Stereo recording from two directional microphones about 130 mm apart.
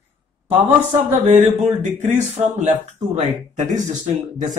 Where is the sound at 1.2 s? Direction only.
55° right (ahead or behind).